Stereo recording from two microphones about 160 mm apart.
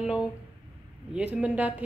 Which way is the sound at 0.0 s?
5° right (ahead or behind).